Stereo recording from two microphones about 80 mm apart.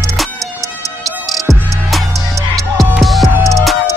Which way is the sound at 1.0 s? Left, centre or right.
Centre.